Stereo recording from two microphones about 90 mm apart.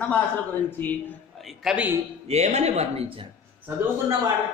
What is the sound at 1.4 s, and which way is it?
Speech, 5° right (ahead or behind).